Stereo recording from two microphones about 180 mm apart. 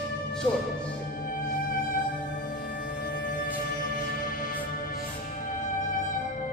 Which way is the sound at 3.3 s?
50° left (ahead or behind).